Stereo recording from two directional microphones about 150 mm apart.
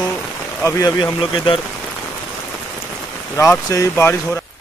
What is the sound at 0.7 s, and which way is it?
Speech, 25° left (ahead or behind).